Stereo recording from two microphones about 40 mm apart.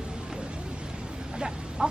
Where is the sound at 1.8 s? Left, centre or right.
Centre.